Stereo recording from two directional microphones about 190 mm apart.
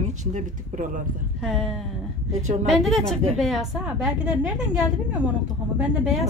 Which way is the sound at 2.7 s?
Centre (ahead or behind).